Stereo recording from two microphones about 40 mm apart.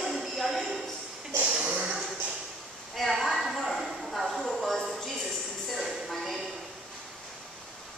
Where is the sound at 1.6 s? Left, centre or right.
Right.